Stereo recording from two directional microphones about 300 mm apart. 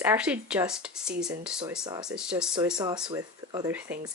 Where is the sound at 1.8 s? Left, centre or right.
Centre.